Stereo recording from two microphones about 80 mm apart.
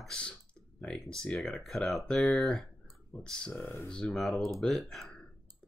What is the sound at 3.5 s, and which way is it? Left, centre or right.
Speech, left.